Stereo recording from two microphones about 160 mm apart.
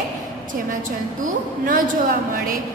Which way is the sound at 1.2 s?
55° right (ahead or behind).